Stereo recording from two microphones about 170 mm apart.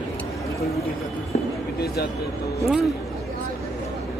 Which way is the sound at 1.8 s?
65° left (ahead or behind).